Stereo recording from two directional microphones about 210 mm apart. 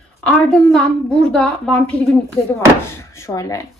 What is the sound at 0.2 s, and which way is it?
A woman's voice, centre (ahead or behind).